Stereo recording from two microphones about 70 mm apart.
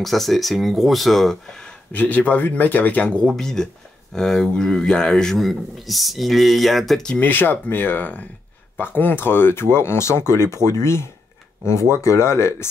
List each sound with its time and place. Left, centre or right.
0.0 s a man's voice: centre
1.9 s speech: left
3.3 s a man's voice: centre
7.2 s speech: left